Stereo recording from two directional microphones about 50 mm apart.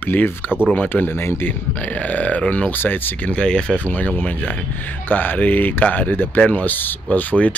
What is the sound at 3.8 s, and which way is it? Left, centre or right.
Speech, left.